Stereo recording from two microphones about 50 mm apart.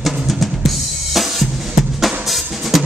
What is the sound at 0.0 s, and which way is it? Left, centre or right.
Drum kit, centre.